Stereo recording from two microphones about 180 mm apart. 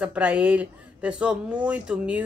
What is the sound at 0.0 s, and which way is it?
Speech, 5° right (ahead or behind).